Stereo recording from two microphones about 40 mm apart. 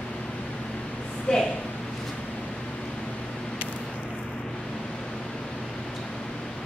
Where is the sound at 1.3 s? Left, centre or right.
Left.